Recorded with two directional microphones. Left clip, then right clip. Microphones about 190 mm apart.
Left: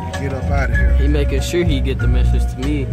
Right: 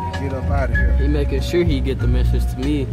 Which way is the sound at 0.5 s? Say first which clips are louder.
Even; 25° left (ahead or behind).